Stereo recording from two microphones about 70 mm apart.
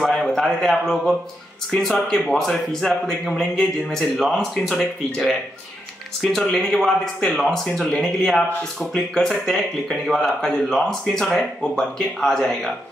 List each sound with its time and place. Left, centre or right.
0.0 s a man's voice: centre